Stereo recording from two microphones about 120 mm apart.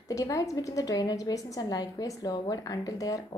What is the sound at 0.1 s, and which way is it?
A woman's voice, 30° left (ahead or behind).